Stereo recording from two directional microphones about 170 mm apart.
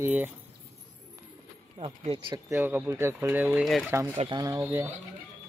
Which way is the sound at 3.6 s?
Centre (ahead or behind).